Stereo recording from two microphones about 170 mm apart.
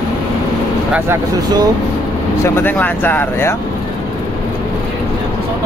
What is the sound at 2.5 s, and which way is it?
Speech, 10° left (ahead or behind).